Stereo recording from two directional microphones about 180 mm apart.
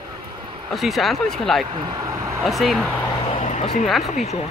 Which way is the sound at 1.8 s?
20° right (ahead or behind).